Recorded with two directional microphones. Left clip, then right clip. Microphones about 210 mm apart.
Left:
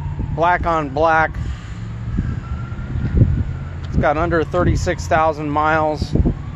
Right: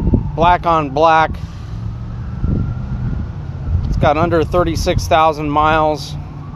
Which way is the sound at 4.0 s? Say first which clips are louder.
Right 3 dB; 15° right (ahead or behind).